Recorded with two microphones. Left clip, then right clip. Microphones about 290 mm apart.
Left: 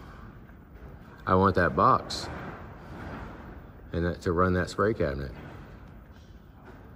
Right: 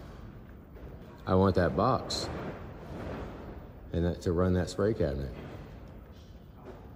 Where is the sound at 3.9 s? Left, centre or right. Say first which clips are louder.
Left 3 dB; centre.